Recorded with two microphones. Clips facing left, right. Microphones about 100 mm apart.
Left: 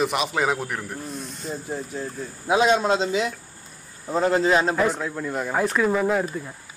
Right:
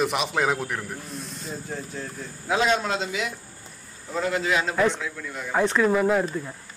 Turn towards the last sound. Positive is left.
turn(degrees=5)  # may be behind; listen again after turning